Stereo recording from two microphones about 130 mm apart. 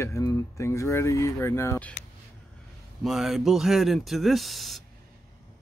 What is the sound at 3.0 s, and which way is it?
Speech, centre (ahead or behind).